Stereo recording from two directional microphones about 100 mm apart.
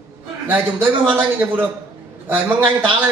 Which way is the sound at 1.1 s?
20° right (ahead or behind).